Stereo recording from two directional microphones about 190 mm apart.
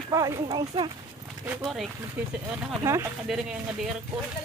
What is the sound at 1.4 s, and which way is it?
Speech, 5° right (ahead or behind).